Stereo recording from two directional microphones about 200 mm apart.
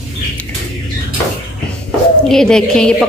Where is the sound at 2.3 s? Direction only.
5° left (ahead or behind).